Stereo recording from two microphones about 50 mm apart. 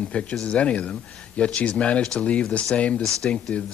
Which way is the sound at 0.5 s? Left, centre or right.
Left.